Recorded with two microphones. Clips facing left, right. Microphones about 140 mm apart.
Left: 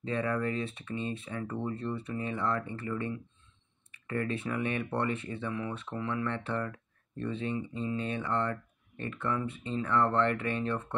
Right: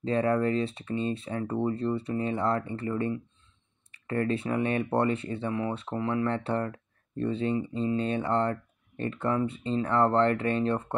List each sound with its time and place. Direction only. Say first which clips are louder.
0.0 s speech: right 6 dB; 35° right (ahead or behind)